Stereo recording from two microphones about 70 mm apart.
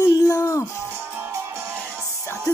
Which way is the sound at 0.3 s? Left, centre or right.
Left.